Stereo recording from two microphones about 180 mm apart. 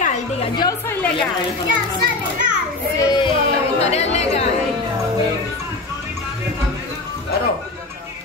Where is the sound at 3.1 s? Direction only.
25° left (ahead or behind).